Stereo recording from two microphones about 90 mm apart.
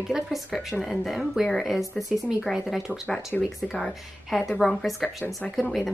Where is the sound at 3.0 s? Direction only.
15° left (ahead or behind).